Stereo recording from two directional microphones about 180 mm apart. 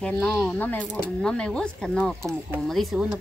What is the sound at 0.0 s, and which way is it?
Speech, 5° left (ahead or behind).